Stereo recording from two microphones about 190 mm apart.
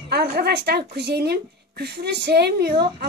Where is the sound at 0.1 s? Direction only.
60° right (ahead or behind).